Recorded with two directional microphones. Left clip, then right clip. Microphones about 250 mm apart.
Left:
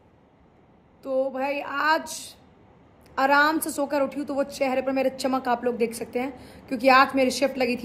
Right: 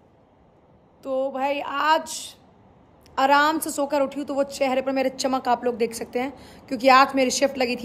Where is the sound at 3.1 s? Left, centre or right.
Centre.